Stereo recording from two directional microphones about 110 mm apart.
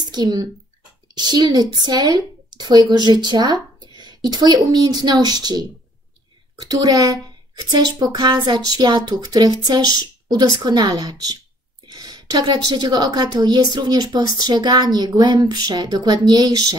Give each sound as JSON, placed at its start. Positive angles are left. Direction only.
{"t": 0.1, "sound": "speech", "side_deg": -40}
{"t": 6.7, "sound": "a woman's voice", "side_deg": -35}